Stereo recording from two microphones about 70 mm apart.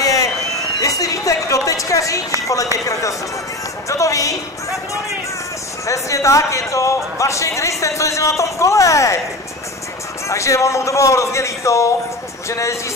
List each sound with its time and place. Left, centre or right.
0.0 s a sound: left
0.7 s a woman's voice: left
5.9 s speech: left
10.2 s speech: left